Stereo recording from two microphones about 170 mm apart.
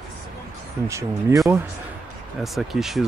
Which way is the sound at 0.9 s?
15° right (ahead or behind).